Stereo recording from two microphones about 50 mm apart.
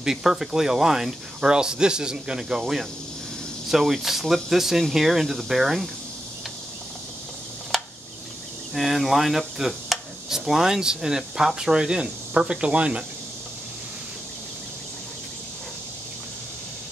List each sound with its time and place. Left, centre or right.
0.0 s speech: centre
2.6 s speech: centre
7.7 s a sound: centre
8.7 s speech: centre; by 13.0 s right